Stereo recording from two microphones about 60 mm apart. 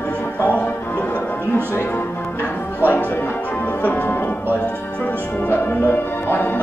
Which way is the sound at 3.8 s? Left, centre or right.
Left.